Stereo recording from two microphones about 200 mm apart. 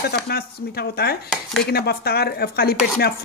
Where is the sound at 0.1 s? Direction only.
50° left (ahead or behind).